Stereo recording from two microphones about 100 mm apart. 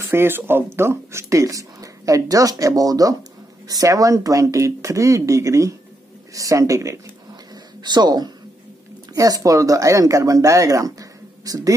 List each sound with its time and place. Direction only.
0.1 s speech: 20° right (ahead or behind)
7.8 s speech: 45° right (ahead or behind)